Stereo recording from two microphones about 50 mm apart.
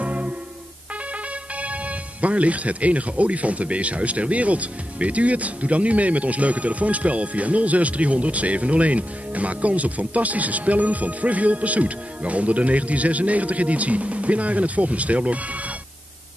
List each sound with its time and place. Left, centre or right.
0.0 s music: right
1.6 s speech: right